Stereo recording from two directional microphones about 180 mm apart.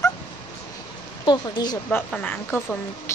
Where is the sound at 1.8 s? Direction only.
10° left (ahead or behind).